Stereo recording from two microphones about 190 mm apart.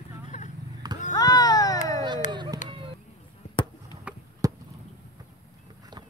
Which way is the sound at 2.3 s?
25° right (ahead or behind).